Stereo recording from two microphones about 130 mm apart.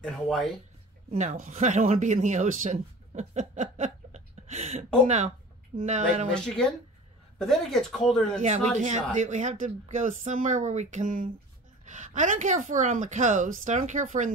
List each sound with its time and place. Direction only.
0.0 s speech: centre (ahead or behind)
1.1 s speech: 65° right (ahead or behind)
6.4 s speech: 5° left (ahead or behind)
8.4 s a woman's voice: 65° right (ahead or behind)